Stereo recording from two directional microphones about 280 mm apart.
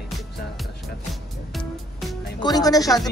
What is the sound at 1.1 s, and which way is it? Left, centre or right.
Music, centre.